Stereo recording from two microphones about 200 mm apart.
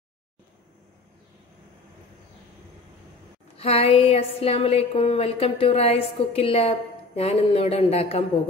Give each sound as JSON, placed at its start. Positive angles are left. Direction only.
{"t": 3.5, "sound": "a woman's voice", "side_deg": 30}